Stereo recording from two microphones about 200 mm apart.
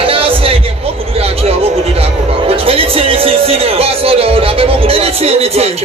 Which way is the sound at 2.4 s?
30° right (ahead or behind).